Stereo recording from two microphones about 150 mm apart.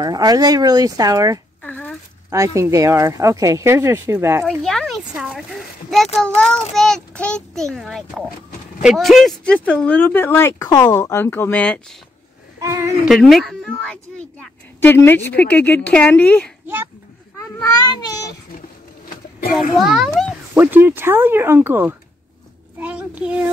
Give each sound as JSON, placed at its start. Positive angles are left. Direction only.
{"t": 0.0, "sound": "speech", "side_deg": -25}
{"t": 1.6, "sound": "a sound", "side_deg": 10}
{"t": 2.3, "sound": "speech", "side_deg": -20}
{"t": 4.5, "sound": "a sound", "side_deg": 5}
{"t": 5.3, "sound": "a child's voice", "side_deg": 0}
{"t": 12.5, "sound": "speech", "side_deg": -20}
{"t": 13.1, "sound": "a woman's voice", "side_deg": 0}
{"t": 16.6, "sound": "a child's voice", "side_deg": -15}
{"t": 17.4, "sound": "a child's voice", "side_deg": 25}
{"t": 19.8, "sound": "a child's voice", "side_deg": -5}
{"t": 20.5, "sound": "a child's voice", "side_deg": -15}